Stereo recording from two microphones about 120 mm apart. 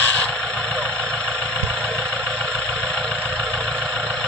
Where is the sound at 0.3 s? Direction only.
10° left (ahead or behind).